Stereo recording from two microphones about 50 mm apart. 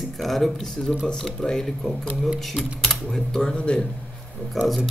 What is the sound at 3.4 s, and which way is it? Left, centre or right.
Speech, centre.